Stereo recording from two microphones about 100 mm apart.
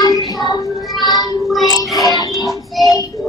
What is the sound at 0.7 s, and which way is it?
Child singing, centre (ahead or behind).